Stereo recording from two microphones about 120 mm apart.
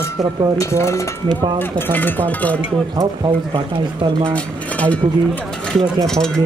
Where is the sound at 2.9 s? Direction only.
35° right (ahead or behind).